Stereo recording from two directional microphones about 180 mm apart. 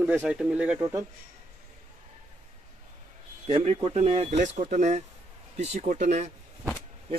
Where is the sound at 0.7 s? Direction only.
15° right (ahead or behind).